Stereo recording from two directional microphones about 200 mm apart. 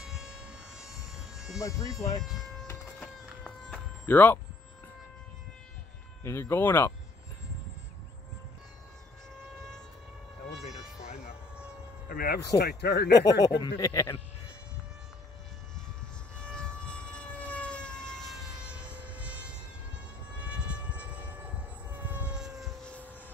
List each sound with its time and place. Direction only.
0.0 s a sound: centre (ahead or behind)
1.6 s speech: 15° left (ahead or behind)
2.7 s a sound: 5° left (ahead or behind)
6.2 s speech: 10° left (ahead or behind)
12.1 s speech: 50° left (ahead or behind)
13.2 s speech: 20° left (ahead or behind)
16.3 s siren: 5° left (ahead or behind)
20.3 s train: 5° right (ahead or behind)
21.9 s vehicle: 10° right (ahead or behind)